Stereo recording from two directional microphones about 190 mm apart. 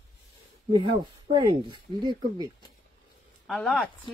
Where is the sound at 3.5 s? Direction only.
Centre (ahead or behind).